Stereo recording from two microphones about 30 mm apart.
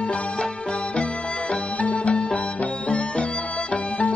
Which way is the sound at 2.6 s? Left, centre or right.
Left.